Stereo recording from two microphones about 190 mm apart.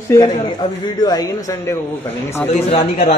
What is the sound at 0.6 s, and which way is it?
A man's voice, 20° left (ahead or behind).